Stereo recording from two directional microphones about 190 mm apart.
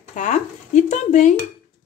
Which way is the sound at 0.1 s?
40° left (ahead or behind).